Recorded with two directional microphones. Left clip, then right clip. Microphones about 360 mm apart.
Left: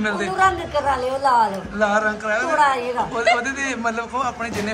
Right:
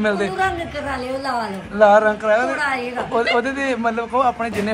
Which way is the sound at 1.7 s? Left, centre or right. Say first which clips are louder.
Right 9 dB; centre.